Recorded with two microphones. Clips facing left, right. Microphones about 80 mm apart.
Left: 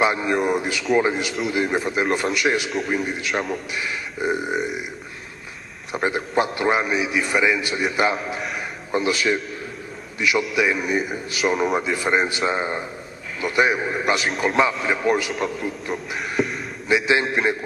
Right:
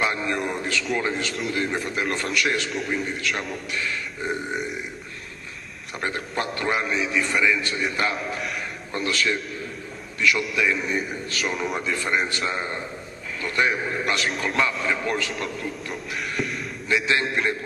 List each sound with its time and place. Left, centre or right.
0.0 s a man's voice: centre
3.3 s a man's voice: centre
3.7 s a man's voice: centre
5.9 s a man's voice: centre
8.9 s a man's voice: centre
12.4 s a man's voice: centre
15.9 s speech: centre
16.9 s a man's voice: centre